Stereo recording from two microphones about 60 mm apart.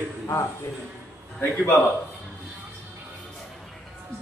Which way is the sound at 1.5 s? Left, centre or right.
Left.